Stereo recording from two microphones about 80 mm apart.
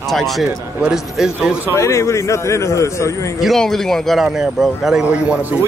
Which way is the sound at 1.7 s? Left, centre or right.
Left.